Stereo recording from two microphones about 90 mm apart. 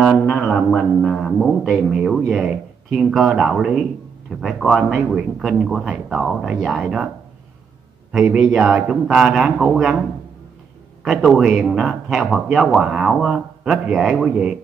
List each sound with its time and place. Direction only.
0.3 s a man's voice: 10° left (ahead or behind); by 7.1 s 5° right (ahead or behind)
8.1 s a man's voice: 10° right (ahead or behind)
11.1 s a man's voice: centre (ahead or behind)